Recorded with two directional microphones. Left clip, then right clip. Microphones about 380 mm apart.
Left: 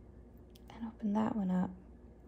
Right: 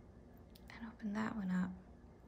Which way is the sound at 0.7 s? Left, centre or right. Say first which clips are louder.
Left 8 dB; centre.